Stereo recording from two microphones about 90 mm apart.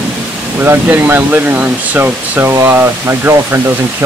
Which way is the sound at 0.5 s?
20° right (ahead or behind).